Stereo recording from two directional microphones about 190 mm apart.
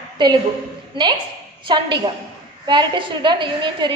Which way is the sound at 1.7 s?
25° right (ahead or behind).